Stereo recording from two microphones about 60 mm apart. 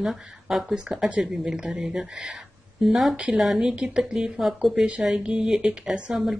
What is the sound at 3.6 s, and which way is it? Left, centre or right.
Speech, centre.